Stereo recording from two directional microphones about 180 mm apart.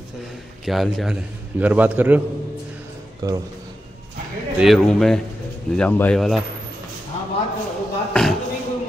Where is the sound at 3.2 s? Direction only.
20° right (ahead or behind).